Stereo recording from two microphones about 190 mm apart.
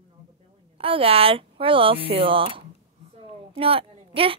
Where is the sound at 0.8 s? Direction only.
30° right (ahead or behind).